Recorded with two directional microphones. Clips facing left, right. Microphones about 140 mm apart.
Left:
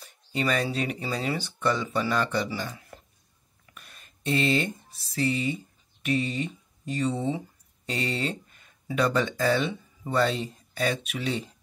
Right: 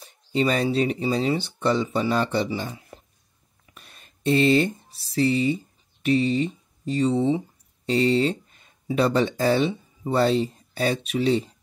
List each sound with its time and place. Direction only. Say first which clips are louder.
0.0 s speech: right 6 dB; 25° right (ahead or behind)